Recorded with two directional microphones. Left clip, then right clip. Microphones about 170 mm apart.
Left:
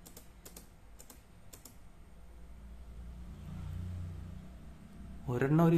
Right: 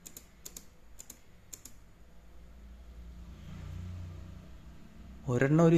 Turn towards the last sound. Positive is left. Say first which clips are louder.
# right 4 dB
turn(degrees=-20)  # may be behind; listen again after turning